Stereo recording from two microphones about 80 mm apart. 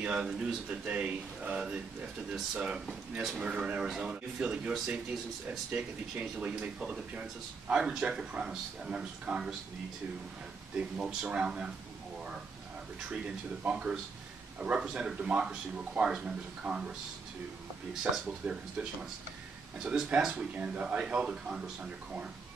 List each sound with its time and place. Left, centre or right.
0.0 s speech: centre
10.8 s speech: centre
13.7 s speech: centre
18.1 s speech: centre